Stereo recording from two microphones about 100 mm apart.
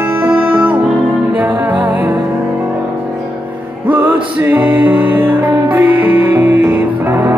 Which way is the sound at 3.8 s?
20° right (ahead or behind).